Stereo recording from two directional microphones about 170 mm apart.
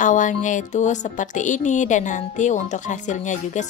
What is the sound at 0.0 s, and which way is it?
Speech, 50° left (ahead or behind).